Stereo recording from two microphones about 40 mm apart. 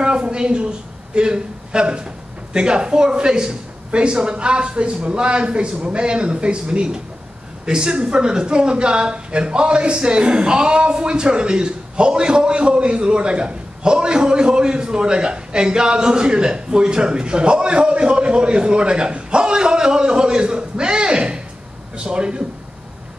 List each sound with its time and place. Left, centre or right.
0.0 s a woman's voice: right